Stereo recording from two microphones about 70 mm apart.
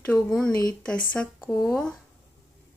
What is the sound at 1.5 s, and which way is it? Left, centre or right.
Speech, centre.